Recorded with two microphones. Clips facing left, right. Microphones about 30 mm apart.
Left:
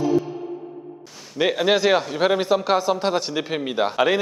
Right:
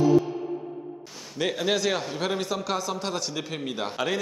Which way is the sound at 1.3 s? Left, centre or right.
Left.